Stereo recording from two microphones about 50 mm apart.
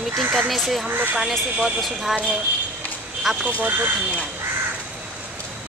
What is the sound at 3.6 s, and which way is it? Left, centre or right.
Speech, right.